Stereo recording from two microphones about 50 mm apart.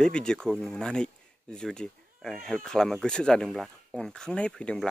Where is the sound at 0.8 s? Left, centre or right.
Centre.